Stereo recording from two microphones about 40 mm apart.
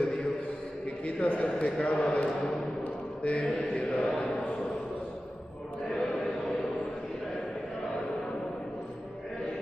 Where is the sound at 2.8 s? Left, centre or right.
Left.